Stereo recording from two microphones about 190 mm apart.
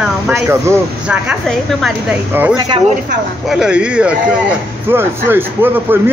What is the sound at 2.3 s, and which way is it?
Speech, 10° right (ahead or behind).